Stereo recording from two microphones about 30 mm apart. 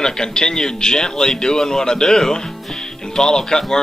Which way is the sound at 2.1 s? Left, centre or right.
Centre.